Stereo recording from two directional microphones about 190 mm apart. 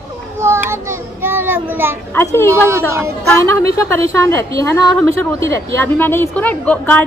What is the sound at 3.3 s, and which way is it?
A woman's voice, 15° left (ahead or behind).